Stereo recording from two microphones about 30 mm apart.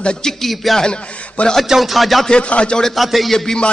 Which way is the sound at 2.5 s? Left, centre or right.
Left.